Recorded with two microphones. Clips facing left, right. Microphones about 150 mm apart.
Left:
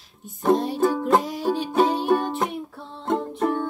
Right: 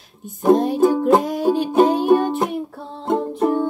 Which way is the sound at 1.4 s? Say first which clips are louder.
Right 6 dB; centre (ahead or behind).